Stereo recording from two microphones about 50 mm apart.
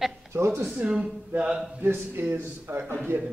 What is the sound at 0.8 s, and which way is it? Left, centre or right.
Speech, centre.